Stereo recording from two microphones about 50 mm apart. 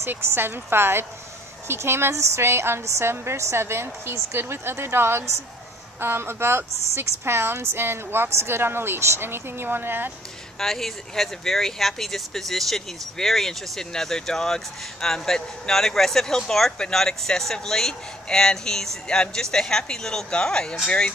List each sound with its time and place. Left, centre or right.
0.0 s a woman's voice: right
10.6 s speech: centre